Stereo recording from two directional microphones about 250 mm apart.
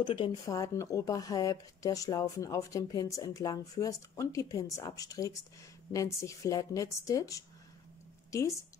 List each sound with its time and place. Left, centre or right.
0.0 s speech: centre